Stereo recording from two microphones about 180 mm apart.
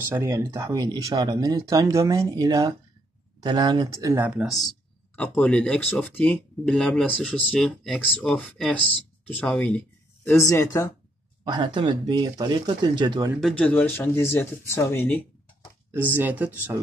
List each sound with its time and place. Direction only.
0.0 s speech: 15° right (ahead or behind)
4.4 s speech: centre (ahead or behind); by 10.9 s 15° left (ahead or behind)
11.4 s speech: 25° right (ahead or behind)
13.4 s speech: 5° left (ahead or behind)
16.1 s speech: 10° right (ahead or behind)